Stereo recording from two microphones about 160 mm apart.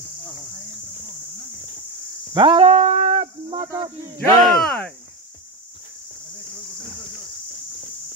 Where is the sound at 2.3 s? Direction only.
30° right (ahead or behind).